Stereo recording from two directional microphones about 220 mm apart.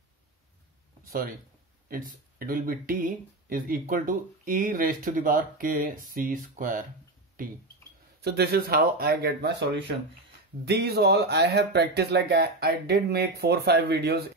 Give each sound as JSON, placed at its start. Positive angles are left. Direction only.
{"t": 2.3, "sound": "speech", "side_deg": -40}